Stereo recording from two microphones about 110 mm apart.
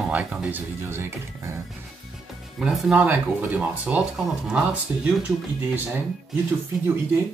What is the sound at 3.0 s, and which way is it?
Speech, 15° right (ahead or behind).